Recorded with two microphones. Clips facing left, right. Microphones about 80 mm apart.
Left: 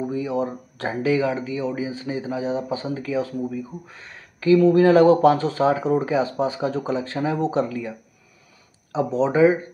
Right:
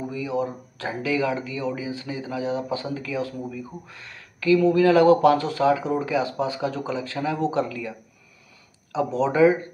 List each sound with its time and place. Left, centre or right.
0.1 s speech: left
8.9 s speech: left
9.3 s speech: centre